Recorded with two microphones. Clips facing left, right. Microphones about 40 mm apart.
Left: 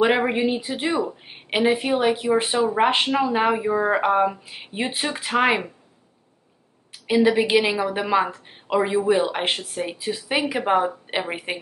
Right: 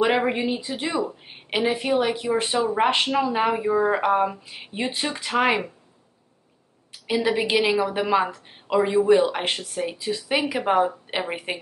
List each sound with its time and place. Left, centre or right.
0.0 s a woman's voice: centre
7.2 s speech: centre
9.4 s speech: left; by 11.6 s centre